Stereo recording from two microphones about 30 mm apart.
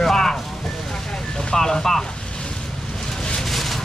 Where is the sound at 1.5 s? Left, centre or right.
Centre.